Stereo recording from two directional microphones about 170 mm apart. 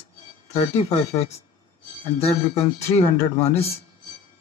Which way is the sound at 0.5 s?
40° left (ahead or behind).